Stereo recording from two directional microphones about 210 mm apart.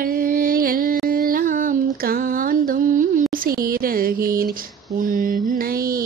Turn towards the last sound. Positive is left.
turn(degrees=-45)  # may be behind; listen again after turning